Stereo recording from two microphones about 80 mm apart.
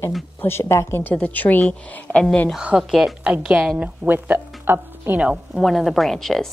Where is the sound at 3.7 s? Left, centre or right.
Right.